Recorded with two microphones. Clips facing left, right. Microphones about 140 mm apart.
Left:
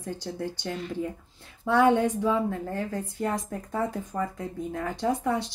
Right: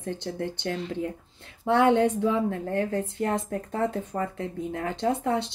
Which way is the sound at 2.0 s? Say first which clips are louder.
Right 2 dB; 60° right (ahead or behind).